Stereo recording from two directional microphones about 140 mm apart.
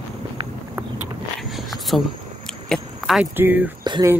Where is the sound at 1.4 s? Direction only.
Centre (ahead or behind).